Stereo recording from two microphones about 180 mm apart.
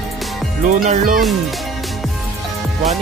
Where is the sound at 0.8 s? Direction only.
45° right (ahead or behind).